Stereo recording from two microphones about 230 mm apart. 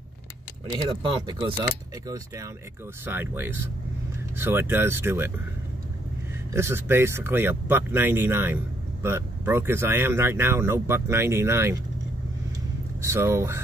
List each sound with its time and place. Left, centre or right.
0.8 s speech: right
6.5 s speech: centre
13.0 s speech: centre